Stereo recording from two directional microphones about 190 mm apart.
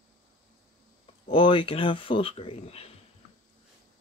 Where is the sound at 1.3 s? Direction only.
25° left (ahead or behind).